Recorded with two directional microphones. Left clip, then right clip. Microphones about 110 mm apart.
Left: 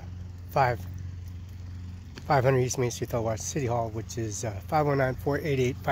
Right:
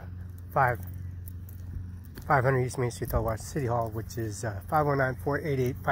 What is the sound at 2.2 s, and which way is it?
Speech, 35° left (ahead or behind).